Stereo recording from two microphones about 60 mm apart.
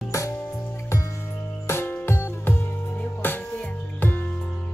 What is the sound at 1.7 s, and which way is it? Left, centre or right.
Music, left.